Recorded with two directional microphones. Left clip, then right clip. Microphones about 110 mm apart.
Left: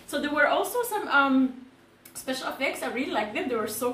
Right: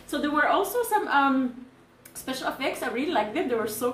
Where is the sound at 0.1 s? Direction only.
15° right (ahead or behind).